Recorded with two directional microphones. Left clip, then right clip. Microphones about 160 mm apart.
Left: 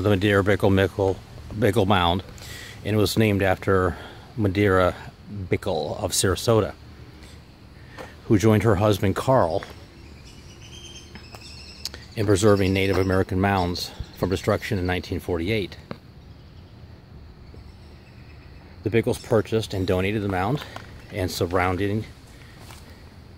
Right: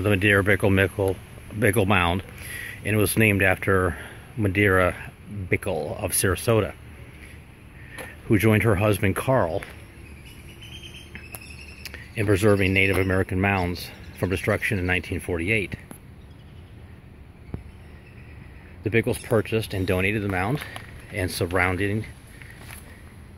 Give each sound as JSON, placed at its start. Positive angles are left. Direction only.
{"t": 0.0, "sound": "speech", "side_deg": 20}
{"t": 8.3, "sound": "speech", "side_deg": 20}
{"t": 11.8, "sound": "speech", "side_deg": 20}
{"t": 18.9, "sound": "speech", "side_deg": 15}